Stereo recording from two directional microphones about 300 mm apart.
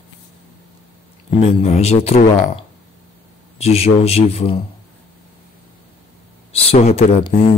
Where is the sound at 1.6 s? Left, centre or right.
Left.